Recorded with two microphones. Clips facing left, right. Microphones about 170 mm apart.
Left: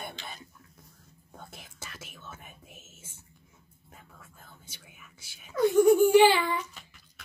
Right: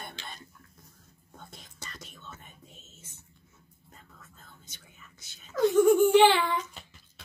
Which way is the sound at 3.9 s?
10° left (ahead or behind).